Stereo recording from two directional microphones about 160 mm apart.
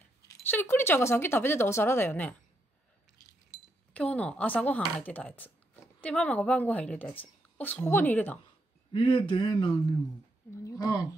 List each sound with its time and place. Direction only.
0.3 s a woman's voice: 15° left (ahead or behind)
3.9 s a woman's voice: 5° left (ahead or behind)
8.9 s speech: 35° left (ahead or behind)
10.5 s speech: 20° left (ahead or behind)